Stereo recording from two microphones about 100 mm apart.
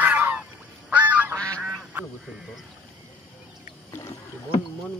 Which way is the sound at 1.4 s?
10° left (ahead or behind).